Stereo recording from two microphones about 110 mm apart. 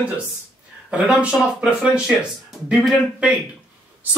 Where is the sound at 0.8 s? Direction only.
10° right (ahead or behind).